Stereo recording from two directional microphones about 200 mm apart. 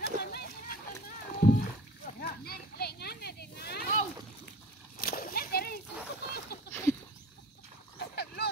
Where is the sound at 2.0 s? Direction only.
50° left (ahead or behind).